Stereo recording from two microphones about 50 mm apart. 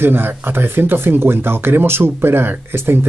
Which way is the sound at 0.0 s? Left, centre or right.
Right.